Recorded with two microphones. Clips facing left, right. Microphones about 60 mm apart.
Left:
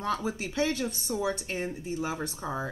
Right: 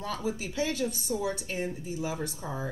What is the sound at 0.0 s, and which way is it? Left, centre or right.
Speech, left.